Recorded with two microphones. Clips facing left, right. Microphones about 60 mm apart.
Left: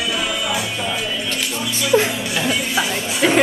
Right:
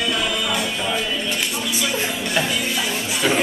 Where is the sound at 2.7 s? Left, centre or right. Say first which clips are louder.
Left 3 dB; left.